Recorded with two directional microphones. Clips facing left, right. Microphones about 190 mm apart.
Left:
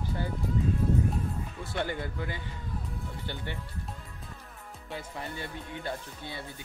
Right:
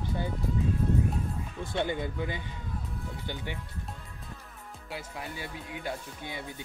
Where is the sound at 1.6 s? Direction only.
15° right (ahead or behind).